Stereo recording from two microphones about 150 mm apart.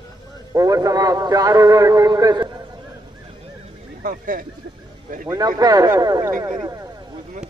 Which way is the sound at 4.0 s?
65° right (ahead or behind).